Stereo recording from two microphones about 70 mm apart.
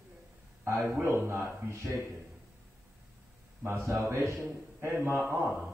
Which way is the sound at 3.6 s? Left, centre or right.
Right.